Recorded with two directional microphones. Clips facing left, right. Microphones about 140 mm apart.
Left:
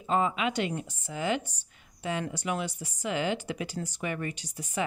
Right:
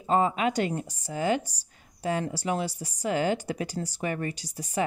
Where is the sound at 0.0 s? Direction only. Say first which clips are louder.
Right 3 dB; 40° right (ahead or behind).